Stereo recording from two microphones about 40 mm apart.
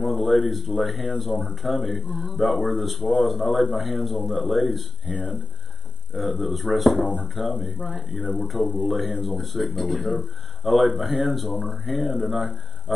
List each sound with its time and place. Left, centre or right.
0.0 s speech: centre
6.1 s speech: centre